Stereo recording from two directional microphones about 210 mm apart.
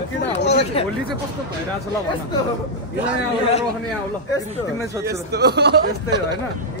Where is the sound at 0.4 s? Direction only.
55° left (ahead or behind).